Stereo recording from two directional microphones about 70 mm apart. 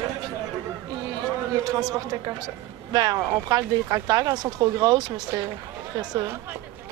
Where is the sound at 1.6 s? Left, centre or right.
Right.